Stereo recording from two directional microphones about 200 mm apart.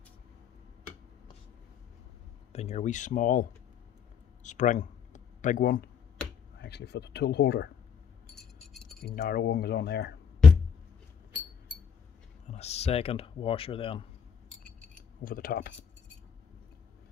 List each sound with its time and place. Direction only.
2.5 s speech: 35° left (ahead or behind)
4.4 s a sound: 40° left (ahead or behind)
6.6 s speech: 55° left (ahead or behind)
8.4 s glass: centre (ahead or behind)
9.0 s speech: 45° left (ahead or behind)
12.4 s speech: 30° left (ahead or behind)
15.2 s speech: 45° left (ahead or behind)